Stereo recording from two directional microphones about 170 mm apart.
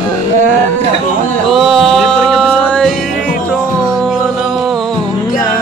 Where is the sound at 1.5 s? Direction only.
Centre (ahead or behind).